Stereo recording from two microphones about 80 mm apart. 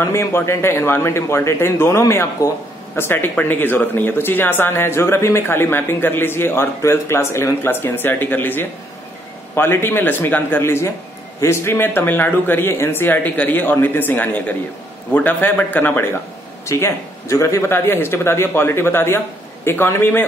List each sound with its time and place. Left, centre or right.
0.0 s a man's voice: left
16.6 s a man's voice: left